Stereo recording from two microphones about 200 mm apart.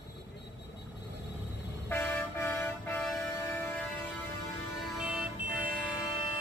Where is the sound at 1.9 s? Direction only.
10° left (ahead or behind).